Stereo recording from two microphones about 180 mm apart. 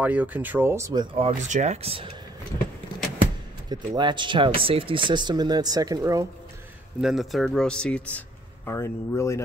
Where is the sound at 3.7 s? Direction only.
25° right (ahead or behind).